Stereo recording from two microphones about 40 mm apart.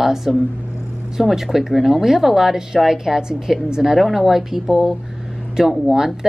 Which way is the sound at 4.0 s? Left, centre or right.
Centre.